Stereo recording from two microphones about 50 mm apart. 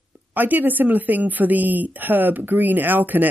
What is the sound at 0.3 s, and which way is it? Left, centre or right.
Speech, right.